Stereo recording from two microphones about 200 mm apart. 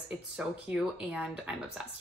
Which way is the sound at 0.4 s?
5° right (ahead or behind).